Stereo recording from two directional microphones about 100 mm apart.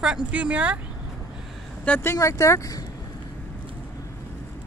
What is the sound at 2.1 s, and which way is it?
Speech, 35° left (ahead or behind).